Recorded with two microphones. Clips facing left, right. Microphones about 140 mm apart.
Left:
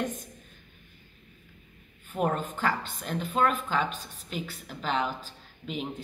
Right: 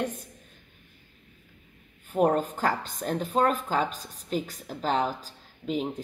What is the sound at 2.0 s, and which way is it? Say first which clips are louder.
Speech: right 5 dB; 35° right (ahead or behind).